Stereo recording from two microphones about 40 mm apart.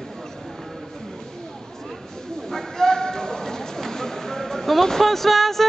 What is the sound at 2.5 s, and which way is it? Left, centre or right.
Clip-clop, centre.